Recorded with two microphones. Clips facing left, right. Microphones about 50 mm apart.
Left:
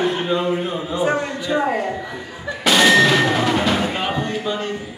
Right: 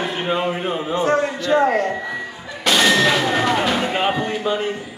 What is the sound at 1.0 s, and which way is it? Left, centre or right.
Speech, centre.